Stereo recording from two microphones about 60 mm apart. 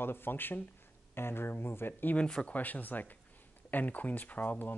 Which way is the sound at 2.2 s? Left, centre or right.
Centre.